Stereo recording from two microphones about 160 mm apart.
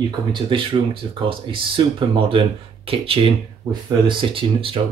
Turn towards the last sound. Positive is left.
turn(degrees=-35)  # may be behind; listen again after turning